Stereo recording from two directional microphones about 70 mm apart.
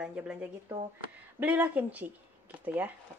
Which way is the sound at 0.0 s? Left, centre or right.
Centre.